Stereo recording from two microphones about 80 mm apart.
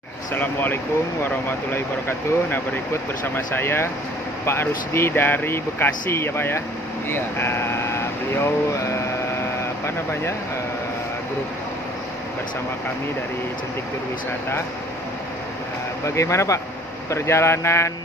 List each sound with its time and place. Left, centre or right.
0.3 s speech: left
9.6 s vehicle: left
16.2 s speech: left